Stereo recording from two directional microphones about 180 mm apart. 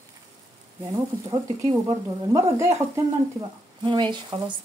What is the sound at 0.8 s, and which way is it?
Speech, 20° right (ahead or behind).